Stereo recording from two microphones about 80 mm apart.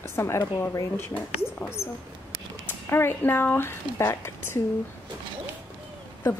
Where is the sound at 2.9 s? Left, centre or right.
Left.